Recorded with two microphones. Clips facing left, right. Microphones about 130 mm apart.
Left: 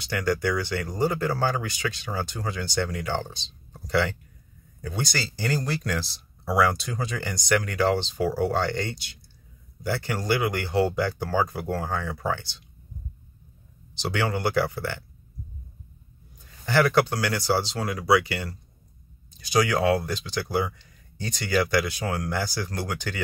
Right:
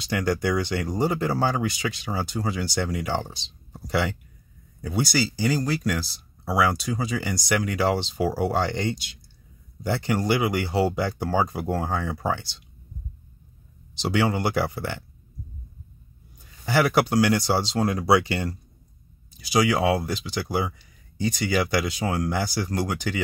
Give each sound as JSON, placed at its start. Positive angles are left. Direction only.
{"t": 0.1, "sound": "speech", "side_deg": -20}
{"t": 13.9, "sound": "speech", "side_deg": -15}
{"t": 16.6, "sound": "speech", "side_deg": -10}
{"t": 17.8, "sound": "speech", "side_deg": -30}
{"t": 19.3, "sound": "speech", "side_deg": -10}